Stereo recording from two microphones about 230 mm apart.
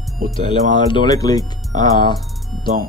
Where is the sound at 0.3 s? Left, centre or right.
Left.